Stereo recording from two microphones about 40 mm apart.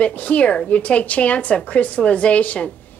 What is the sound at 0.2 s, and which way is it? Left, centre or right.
A woman's voice, left.